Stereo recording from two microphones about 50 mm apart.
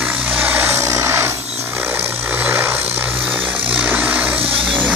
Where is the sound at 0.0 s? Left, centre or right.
Right.